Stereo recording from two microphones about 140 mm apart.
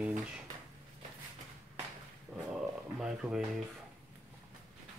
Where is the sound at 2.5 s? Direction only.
5° right (ahead or behind).